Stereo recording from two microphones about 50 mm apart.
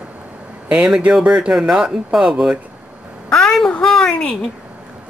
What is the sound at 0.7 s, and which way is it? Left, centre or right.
Speech, right.